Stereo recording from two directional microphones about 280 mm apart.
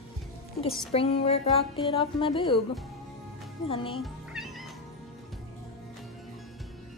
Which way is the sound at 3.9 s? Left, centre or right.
Centre.